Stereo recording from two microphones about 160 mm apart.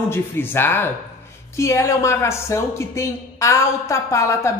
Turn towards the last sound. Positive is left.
turn(degrees=20)  # may be behind; listen again after turning